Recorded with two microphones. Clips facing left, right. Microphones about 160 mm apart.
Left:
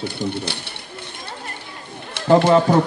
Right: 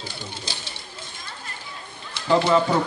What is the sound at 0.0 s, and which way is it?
Speech, 60° left (ahead or behind).